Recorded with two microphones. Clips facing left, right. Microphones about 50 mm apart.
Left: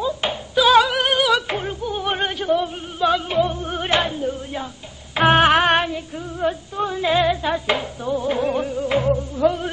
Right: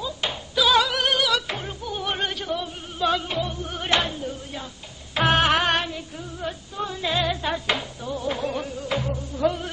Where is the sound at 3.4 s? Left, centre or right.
Left.